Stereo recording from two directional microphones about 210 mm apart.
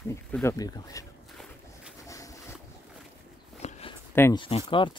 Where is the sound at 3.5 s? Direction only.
30° left (ahead or behind).